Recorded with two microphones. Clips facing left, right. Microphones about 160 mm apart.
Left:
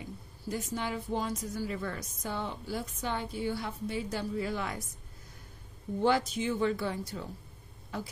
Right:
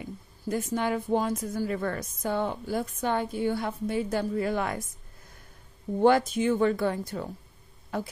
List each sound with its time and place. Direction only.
0.5 s a woman's voice: 55° right (ahead or behind)
5.9 s a woman's voice: 50° right (ahead or behind)